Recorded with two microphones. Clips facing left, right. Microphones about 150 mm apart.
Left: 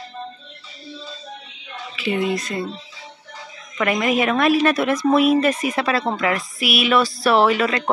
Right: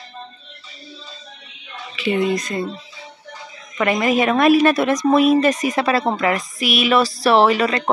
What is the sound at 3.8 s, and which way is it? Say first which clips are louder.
Speech: right 2 dB; centre (ahead or behind).